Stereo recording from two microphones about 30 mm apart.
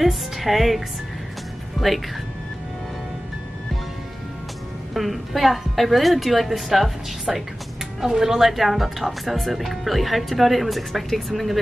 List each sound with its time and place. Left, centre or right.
0.0 s speech: centre
4.9 s speech: centre
8.0 s a woman's voice: centre
8.4 s speech: centre